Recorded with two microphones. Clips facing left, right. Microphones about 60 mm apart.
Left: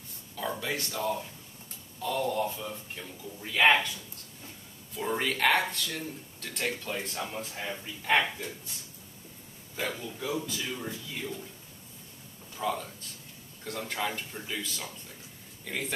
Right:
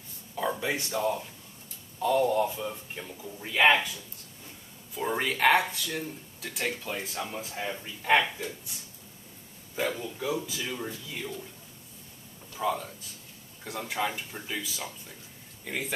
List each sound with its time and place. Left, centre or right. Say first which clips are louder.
0.4 s a man's voice: right 3 dB; centre
4.9 s speech: right 1 dB; centre
9.8 s a man's voice: right 4 dB; right
10.4 s a man's voice: right 1 dB; centre
12.5 s a man's voice: right 2 dB; centre